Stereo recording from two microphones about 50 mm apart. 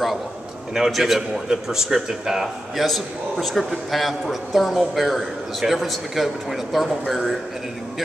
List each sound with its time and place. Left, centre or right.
0.7 s a man's voice: centre